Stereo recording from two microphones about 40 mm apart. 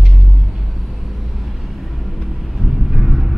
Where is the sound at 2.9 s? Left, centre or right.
Centre.